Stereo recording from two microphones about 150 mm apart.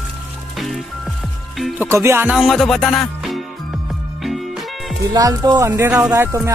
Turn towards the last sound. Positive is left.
turn(degrees=-20)  # may be behind; listen again after turning